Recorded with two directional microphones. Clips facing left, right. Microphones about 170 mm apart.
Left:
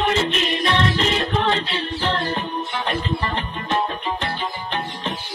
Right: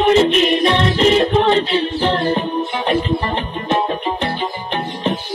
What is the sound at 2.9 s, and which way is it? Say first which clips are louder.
Music: right 7 dB; 25° right (ahead or behind).